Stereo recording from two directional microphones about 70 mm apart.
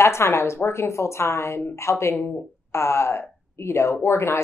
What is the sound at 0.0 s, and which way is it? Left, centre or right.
A woman's voice, left.